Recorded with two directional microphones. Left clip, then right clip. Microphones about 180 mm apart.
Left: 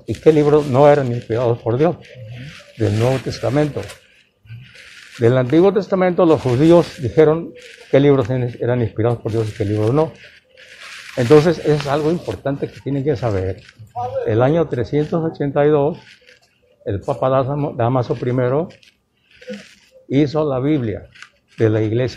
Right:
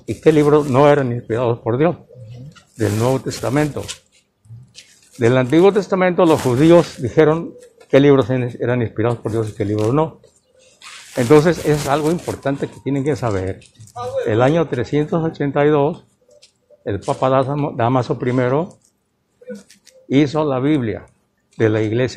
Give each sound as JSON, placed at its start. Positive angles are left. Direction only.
{"t": 0.0, "sound": "speech", "side_deg": -45}
{"t": 5.2, "sound": "speech", "side_deg": -45}
{"t": 11.1, "sound": "a man's voice", "side_deg": -50}
{"t": 20.1, "sound": "a man's voice", "side_deg": -40}